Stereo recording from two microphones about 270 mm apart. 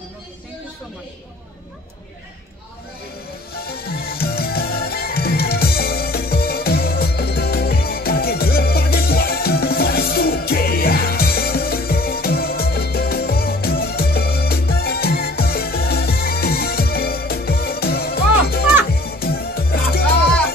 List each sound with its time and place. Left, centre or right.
3.5 s music: left